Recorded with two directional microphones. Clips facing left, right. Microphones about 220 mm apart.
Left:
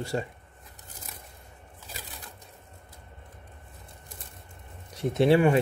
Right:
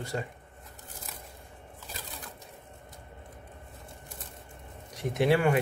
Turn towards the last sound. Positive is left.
turn(degrees=25)  # may be behind; listen again after turning